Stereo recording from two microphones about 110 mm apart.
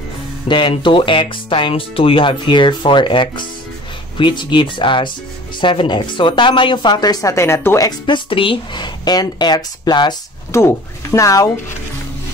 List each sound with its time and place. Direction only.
0.5 s speech: 45° left (ahead or behind); by 7.9 s 25° left (ahead or behind)
8.1 s speech: 55° left (ahead or behind)
10.5 s speech: 25° left (ahead or behind)